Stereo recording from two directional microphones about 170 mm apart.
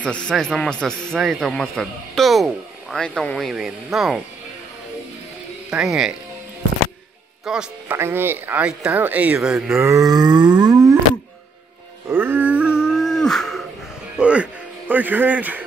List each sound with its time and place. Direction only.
0.0 s speech: 5° left (ahead or behind)
5.7 s speech: 5° right (ahead or behind)
7.4 s speech: 5° right (ahead or behind)
9.8 s a sound: 20° right (ahead or behind)
12.1 s a sound: 10° right (ahead or behind)
14.1 s music: 5° right (ahead or behind)